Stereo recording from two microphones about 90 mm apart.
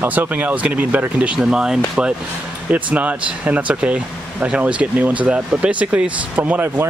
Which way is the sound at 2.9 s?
15° right (ahead or behind).